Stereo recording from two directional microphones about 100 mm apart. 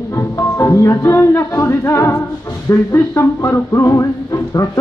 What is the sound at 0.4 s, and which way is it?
Music, 30° left (ahead or behind).